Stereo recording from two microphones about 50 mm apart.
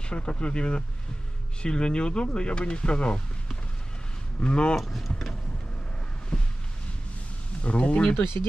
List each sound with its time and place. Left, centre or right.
0.0 s speech: left
4.4 s speech: left
4.7 s speech: centre
6.3 s a sound: centre
7.6 s speech: left
8.2 s speech: left